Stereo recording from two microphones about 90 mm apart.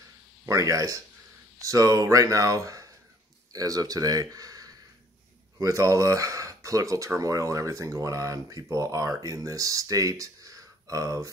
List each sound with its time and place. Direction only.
0.5 s speech: 40° right (ahead or behind)